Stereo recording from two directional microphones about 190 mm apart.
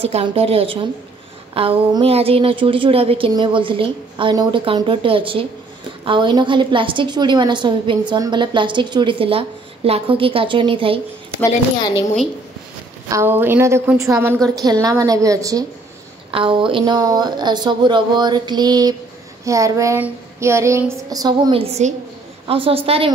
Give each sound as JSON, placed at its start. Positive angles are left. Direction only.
{"t": 0.0, "sound": "a woman's voice", "side_deg": -30}
{"t": 13.1, "sound": "a woman's voice", "side_deg": -10}
{"t": 21.5, "sound": "a woman's voice", "side_deg": -35}